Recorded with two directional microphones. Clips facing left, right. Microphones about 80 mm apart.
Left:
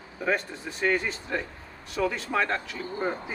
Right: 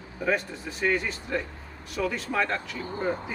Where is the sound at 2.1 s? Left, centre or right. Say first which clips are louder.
Even; centre.